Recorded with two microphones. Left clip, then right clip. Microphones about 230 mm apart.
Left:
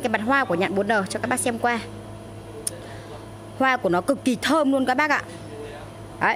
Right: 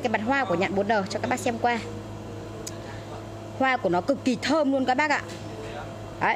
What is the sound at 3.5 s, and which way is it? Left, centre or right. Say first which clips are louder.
A woman's voice: left 3 dB; left.